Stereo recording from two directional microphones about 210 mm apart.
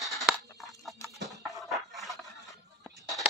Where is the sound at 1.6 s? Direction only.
Centre (ahead or behind).